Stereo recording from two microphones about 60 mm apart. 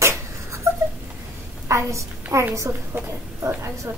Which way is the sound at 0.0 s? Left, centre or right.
Right.